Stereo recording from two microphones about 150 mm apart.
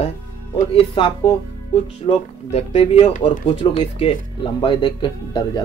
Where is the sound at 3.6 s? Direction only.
40° left (ahead or behind).